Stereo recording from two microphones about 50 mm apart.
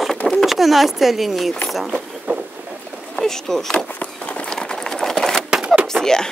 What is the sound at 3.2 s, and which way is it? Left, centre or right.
Speech, centre.